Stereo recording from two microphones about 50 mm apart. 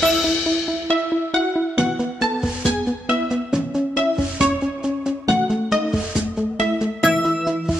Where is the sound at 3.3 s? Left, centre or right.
Centre.